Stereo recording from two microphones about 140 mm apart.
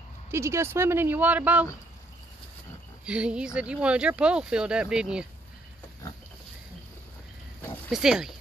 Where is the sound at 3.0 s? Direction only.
5° right (ahead or behind).